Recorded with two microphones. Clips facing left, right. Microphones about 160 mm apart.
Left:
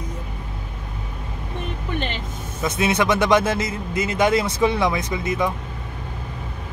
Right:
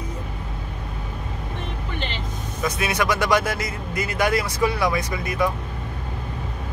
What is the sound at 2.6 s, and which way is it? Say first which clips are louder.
Speech: left 3 dB; 25° left (ahead or behind).